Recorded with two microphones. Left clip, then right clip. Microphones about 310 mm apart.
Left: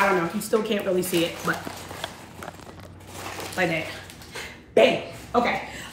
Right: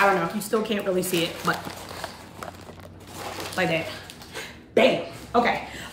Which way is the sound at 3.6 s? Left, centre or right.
Centre.